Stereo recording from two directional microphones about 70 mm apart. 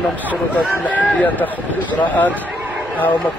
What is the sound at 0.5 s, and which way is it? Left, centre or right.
Speech, left.